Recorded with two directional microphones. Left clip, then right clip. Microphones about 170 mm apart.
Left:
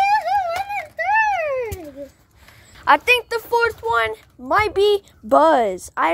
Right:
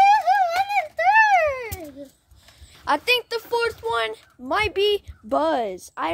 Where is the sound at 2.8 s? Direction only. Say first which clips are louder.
Left 6 dB; 10° left (ahead or behind).